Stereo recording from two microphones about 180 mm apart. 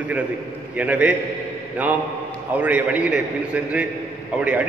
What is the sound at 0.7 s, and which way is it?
Speech, 5° right (ahead or behind).